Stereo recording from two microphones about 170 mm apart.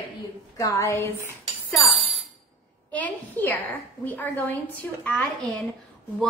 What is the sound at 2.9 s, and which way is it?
A woman's voice, 10° left (ahead or behind).